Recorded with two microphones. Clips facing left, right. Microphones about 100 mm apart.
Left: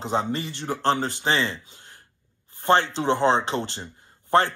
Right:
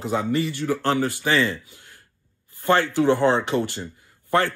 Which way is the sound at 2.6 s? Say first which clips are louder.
Right 2 dB; 20° left (ahead or behind).